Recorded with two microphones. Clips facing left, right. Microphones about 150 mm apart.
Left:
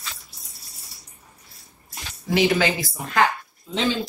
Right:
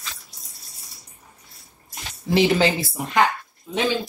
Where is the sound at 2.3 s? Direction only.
30° right (ahead or behind).